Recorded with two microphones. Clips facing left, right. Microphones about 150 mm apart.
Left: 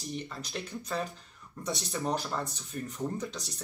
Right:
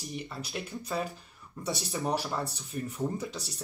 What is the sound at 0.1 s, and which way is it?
Speech, 5° right (ahead or behind).